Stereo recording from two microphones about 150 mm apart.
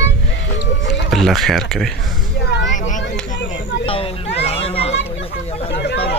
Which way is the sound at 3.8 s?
40° left (ahead or behind).